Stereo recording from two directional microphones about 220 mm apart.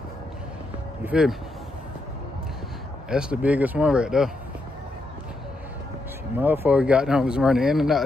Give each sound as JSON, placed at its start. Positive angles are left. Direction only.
{"t": 1.0, "sound": "speech", "side_deg": -5}
{"t": 3.1, "sound": "speech", "side_deg": -5}
{"t": 6.3, "sound": "speech", "side_deg": -10}